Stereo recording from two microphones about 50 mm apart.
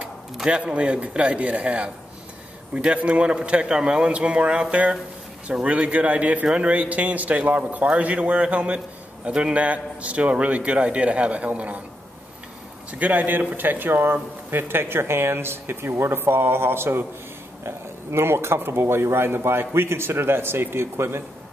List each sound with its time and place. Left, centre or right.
0.5 s speech: right
13.0 s speech: right